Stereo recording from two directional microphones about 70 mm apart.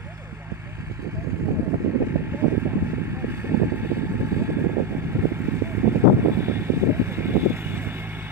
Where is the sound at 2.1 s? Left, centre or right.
Right.